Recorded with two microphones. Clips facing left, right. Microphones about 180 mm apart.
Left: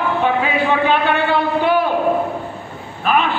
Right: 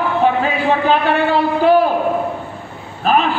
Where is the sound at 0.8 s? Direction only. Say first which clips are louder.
Right 2 dB; 40° right (ahead or behind).